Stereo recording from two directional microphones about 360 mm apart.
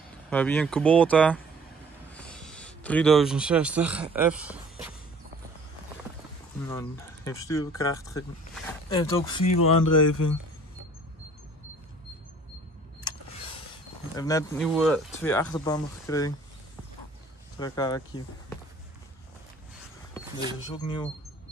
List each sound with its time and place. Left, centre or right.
0.3 s speech: centre
6.7 s speech: centre
9.6 s speech: left
14.1 s speech: centre
17.6 s speech: centre
20.7 s speech: centre